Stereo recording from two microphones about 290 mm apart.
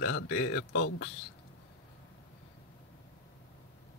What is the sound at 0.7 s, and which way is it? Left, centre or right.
Speech, left.